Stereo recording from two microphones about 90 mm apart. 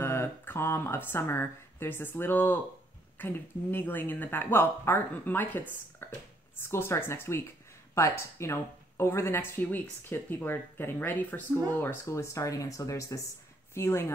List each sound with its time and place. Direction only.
0.0 s speech: 30° left (ahead or behind)
13.7 s speech: 25° left (ahead or behind)